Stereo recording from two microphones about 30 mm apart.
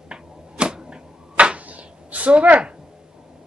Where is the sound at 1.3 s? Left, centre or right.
Right.